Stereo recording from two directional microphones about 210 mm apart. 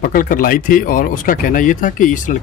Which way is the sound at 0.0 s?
40° left (ahead or behind).